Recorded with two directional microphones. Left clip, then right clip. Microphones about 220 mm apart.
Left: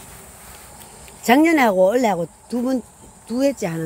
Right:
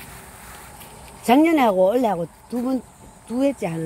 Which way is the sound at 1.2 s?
5° left (ahead or behind).